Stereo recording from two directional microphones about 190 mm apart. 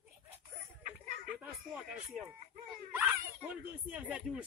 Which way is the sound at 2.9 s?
10° right (ahead or behind).